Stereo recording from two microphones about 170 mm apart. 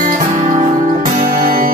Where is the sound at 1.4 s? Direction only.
55° right (ahead or behind).